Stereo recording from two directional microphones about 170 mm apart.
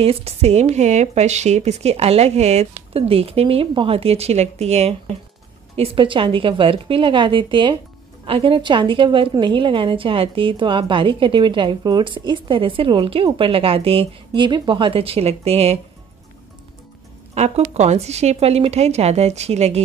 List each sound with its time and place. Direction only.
0.0 s a woman's voice: 35° right (ahead or behind)
17.3 s speech: 40° right (ahead or behind)